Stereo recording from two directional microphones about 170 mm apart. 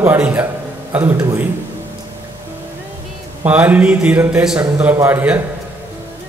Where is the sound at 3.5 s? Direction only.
10° right (ahead or behind).